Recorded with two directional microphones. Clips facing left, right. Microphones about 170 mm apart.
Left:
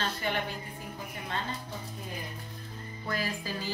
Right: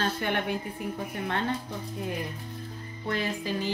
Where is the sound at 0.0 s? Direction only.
60° right (ahead or behind).